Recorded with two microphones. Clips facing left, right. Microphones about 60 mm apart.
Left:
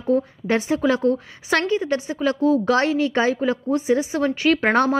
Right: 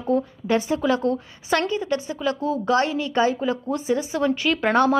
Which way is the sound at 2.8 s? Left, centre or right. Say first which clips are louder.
Left 3 dB; left.